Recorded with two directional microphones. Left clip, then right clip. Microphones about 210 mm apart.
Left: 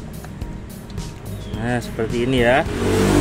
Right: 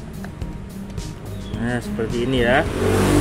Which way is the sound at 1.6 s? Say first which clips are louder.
Left 2 dB; centre (ahead or behind).